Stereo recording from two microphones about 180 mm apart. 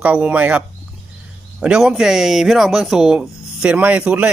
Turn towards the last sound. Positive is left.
turn(degrees=-5)  # may be behind; listen again after turning